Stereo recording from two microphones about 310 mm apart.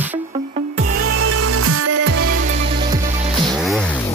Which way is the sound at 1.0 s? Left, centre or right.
Right.